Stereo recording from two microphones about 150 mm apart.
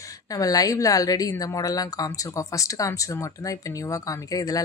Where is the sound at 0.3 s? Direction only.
25° left (ahead or behind).